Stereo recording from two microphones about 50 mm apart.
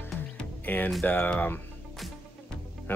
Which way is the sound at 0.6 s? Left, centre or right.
Left.